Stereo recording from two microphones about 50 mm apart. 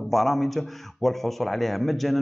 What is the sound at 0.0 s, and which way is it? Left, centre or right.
A man's voice, centre.